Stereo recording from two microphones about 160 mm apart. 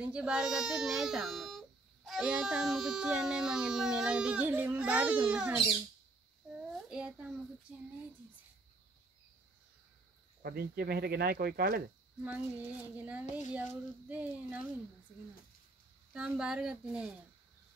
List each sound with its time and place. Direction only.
0.0 s speech: 5° right (ahead or behind)
6.7 s a sound: 5° right (ahead or behind)
7.7 s speech: 5° right (ahead or behind)
10.4 s speech: 75° right (ahead or behind)
12.2 s speech: 10° right (ahead or behind)
16.1 s speech: 5° right (ahead or behind)